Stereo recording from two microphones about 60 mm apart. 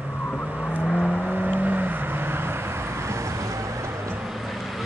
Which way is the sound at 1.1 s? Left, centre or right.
Right.